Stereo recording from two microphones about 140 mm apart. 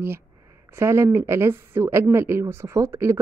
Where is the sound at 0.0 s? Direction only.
20° right (ahead or behind).